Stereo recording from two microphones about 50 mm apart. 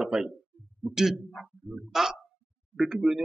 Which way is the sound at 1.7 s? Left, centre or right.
Centre.